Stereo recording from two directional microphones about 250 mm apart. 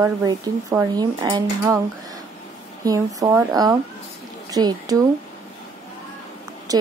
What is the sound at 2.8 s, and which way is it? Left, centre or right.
Speech, centre.